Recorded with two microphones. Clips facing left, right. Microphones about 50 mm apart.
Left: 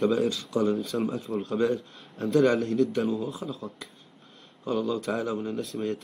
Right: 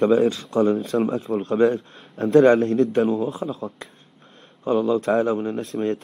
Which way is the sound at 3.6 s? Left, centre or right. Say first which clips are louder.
Right 6 dB; right.